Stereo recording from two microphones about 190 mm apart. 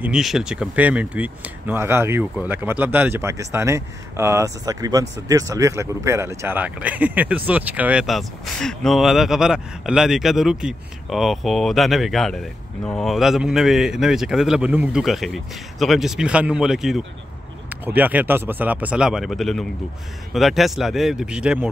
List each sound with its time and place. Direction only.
0.0 s speech: 5° right (ahead or behind)